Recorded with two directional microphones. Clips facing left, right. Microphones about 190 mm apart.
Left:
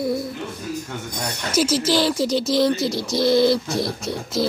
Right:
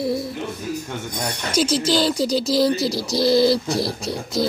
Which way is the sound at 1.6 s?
5° left (ahead or behind).